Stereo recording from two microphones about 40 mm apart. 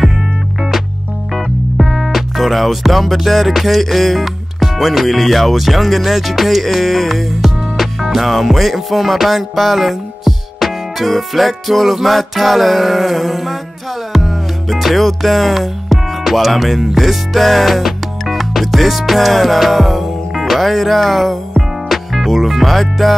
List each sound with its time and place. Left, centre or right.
0.6 s music: centre